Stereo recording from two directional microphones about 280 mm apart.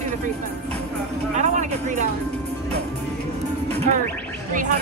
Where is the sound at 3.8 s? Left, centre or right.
Right.